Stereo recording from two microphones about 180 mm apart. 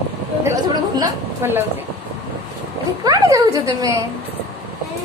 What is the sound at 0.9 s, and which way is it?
Speech, 15° right (ahead or behind).